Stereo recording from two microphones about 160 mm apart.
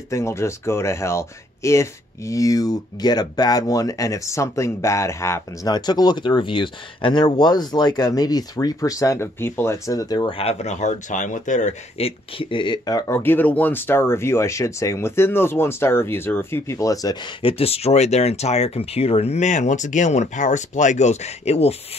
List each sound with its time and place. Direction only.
0.1 s speech: 15° left (ahead or behind); by 12.1 s 50° left (ahead or behind)
12.4 s speech: 30° left (ahead or behind)